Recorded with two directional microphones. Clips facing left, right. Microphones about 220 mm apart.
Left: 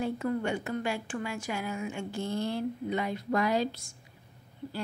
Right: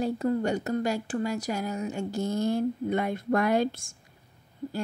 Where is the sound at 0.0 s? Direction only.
35° right (ahead or behind).